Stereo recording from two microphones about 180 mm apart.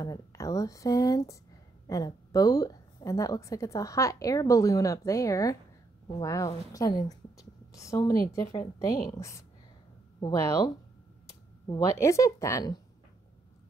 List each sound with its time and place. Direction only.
0.0 s a woman's voice: 20° left (ahead or behind)